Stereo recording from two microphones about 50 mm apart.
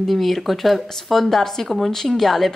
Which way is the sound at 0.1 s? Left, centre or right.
Centre.